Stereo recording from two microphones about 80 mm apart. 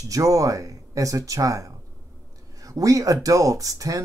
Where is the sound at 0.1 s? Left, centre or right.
Right.